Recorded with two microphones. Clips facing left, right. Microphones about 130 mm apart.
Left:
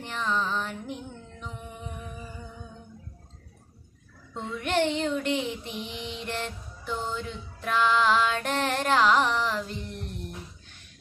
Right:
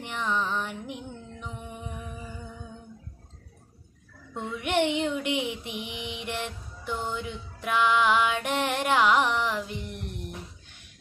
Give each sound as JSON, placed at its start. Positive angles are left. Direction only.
{"t": 0.0, "sound": "music", "side_deg": -15}
{"t": 4.3, "sound": "child singing", "side_deg": -15}